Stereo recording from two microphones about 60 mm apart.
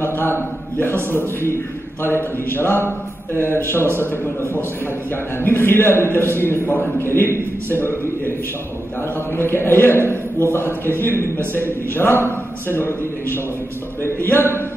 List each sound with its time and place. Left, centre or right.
0.0 s a man's voice: left
5.4 s a man's voice: left
9.4 s a man's voice: left
11.9 s a man's voice: left
14.0 s a man's voice: left